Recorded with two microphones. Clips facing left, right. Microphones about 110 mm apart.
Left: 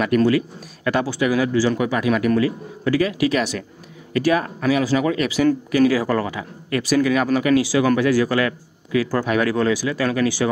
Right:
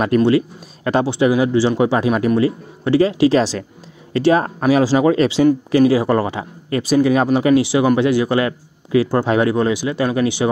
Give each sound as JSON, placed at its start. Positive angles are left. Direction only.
{"t": 0.0, "sound": "speech", "side_deg": -30}